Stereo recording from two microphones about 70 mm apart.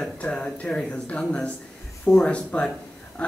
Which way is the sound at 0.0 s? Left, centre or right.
Centre.